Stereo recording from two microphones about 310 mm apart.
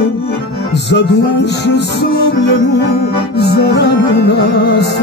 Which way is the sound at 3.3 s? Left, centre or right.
Left.